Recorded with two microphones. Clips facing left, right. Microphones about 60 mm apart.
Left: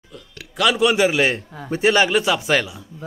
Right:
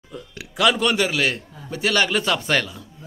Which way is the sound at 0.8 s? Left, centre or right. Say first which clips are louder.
Left 4 dB; centre.